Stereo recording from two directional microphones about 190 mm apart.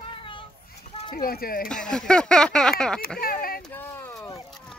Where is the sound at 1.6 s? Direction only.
5° left (ahead or behind).